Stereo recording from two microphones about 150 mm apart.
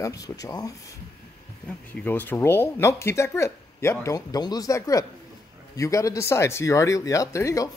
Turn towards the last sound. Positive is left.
turn(degrees=20)  # may be behind; listen again after turning